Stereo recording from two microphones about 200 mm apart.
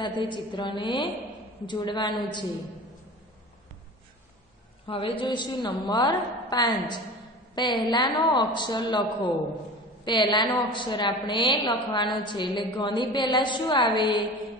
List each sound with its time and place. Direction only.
0.0 s a woman's voice: 25° left (ahead or behind)
4.8 s a woman's voice: 25° left (ahead or behind)